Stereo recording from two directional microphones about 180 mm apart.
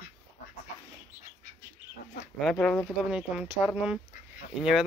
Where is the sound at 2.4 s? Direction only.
5° left (ahead or behind).